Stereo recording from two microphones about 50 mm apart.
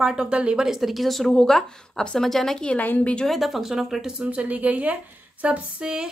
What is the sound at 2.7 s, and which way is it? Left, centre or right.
Speech, left.